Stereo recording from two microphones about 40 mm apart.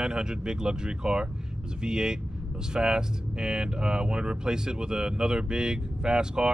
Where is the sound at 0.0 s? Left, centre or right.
Right.